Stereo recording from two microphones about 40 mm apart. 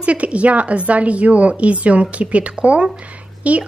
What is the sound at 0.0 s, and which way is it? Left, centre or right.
A woman's voice, right.